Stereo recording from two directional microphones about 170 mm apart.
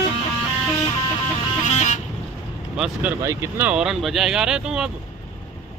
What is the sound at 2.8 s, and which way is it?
Speech, 5° right (ahead or behind).